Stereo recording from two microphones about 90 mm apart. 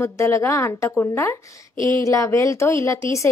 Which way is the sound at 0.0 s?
30° left (ahead or behind).